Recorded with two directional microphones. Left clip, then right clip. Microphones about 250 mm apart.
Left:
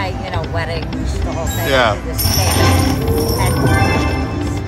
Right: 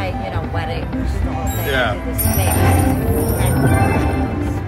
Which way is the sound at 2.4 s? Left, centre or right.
Centre.